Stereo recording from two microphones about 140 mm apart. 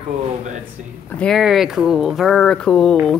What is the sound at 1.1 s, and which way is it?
A woman's voice, centre (ahead or behind).